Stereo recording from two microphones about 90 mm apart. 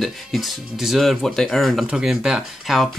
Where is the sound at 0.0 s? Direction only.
Centre (ahead or behind).